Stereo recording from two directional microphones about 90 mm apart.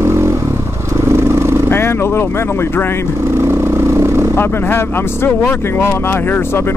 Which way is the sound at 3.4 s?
25° right (ahead or behind).